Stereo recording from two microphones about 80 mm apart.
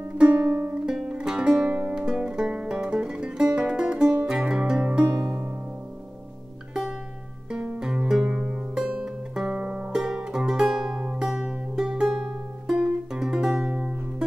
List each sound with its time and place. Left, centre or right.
0.2 s music: centre
4.8 s music: right
7.8 s music: centre